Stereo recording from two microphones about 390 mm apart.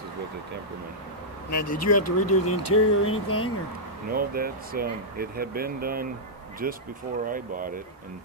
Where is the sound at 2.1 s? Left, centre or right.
Left.